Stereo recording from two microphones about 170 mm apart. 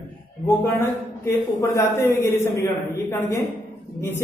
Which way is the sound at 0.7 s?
15° left (ahead or behind).